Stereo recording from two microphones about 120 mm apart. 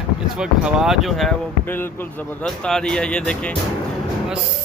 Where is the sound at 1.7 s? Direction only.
15° left (ahead or behind).